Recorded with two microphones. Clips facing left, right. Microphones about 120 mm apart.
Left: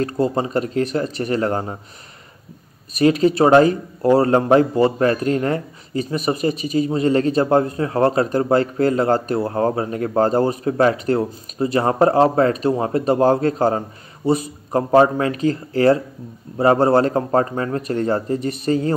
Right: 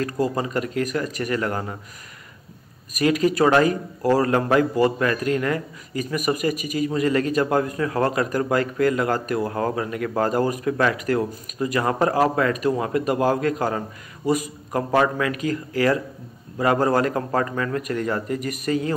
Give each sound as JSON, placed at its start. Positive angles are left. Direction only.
{"t": 0.0, "sound": "speech", "side_deg": 30}
{"t": 2.9, "sound": "speech", "side_deg": 30}